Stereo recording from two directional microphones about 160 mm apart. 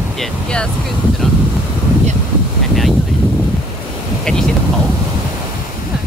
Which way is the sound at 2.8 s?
Centre (ahead or behind).